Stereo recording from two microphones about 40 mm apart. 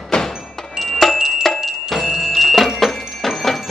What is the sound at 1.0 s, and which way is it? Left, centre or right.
Wind chime, centre.